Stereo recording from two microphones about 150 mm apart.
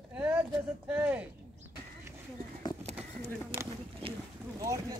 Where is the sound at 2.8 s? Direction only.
45° right (ahead or behind).